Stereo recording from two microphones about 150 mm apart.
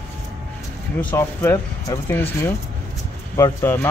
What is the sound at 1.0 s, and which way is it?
Speech, 15° left (ahead or behind).